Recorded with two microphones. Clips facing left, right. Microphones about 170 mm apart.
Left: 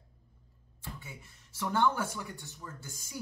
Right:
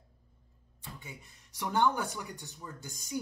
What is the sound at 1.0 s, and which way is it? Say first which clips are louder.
Speech: right 1 dB; 15° right (ahead or behind).